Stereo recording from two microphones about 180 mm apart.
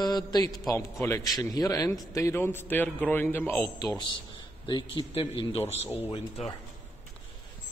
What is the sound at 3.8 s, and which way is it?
Speech, 20° left (ahead or behind).